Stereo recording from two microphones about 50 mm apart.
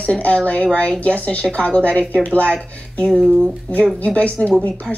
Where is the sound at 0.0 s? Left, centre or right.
Left.